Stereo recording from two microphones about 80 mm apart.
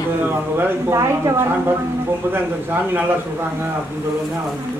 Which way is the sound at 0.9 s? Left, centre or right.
Right.